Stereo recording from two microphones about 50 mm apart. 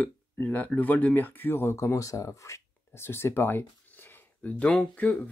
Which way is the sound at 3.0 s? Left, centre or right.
Left.